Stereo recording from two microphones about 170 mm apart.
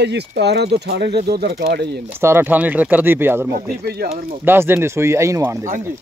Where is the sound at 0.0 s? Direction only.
80° right; by 1.9 s 65° right (ahead or behind).